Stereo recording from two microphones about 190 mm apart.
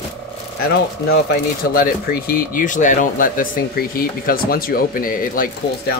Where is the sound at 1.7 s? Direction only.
50° left (ahead or behind).